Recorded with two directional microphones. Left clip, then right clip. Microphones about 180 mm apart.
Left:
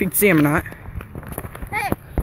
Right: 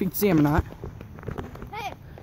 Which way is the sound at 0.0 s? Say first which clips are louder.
Left 6 dB; centre (ahead or behind).